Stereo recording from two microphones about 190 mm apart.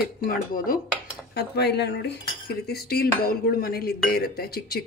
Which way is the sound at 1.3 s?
60° left (ahead or behind).